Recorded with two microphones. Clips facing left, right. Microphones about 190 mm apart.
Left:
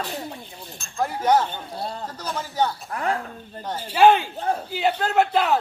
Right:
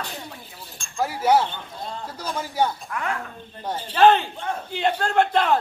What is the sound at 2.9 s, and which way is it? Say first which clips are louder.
Speech: left 3 dB; 35° left (ahead or behind).